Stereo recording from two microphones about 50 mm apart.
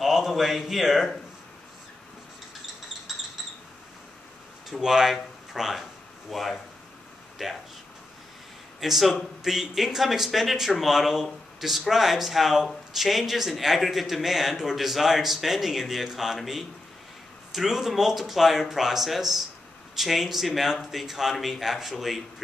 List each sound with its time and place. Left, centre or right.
0.0 s a man's voice: centre
4.6 s speech: centre
8.8 s speech: centre